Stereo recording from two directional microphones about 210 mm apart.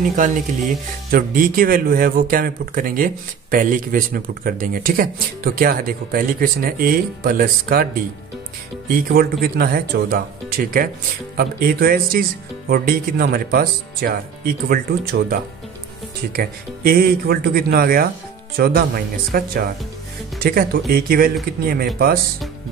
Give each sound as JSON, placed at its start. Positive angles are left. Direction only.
{"t": 0.1, "sound": "speech", "side_deg": -35}
{"t": 8.9, "sound": "speech", "side_deg": -45}